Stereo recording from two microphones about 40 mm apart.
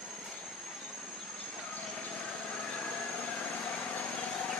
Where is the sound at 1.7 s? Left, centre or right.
Left.